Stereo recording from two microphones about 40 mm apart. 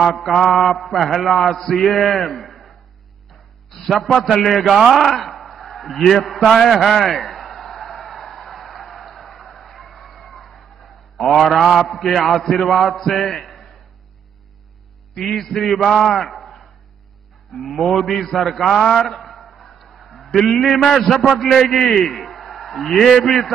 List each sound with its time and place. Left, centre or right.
0.0 s a man's voice: centre
3.8 s a man's voice: centre
8.5 s a sound: centre
12.8 s mantra: centre
15.1 s a man's voice: centre